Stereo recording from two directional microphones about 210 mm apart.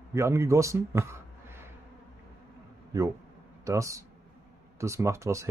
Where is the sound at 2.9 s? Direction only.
15° right (ahead or behind).